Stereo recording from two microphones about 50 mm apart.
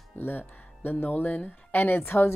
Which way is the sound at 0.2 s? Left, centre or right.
Left.